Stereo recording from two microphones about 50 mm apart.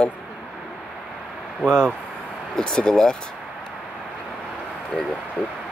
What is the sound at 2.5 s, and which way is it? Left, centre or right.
Speech, centre.